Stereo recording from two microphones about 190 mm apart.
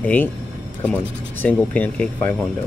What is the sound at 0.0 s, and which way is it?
Speech, 10° left (ahead or behind).